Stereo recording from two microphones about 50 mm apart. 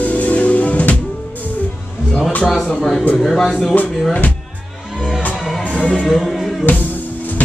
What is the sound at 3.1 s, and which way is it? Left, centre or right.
Speech, centre.